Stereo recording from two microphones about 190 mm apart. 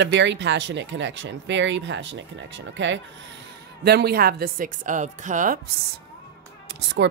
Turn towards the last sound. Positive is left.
turn(degrees=-65)  # may be behind; listen again after turning